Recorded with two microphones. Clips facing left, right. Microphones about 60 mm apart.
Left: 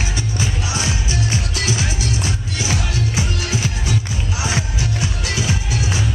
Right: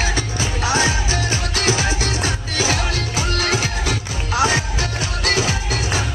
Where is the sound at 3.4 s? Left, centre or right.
Right.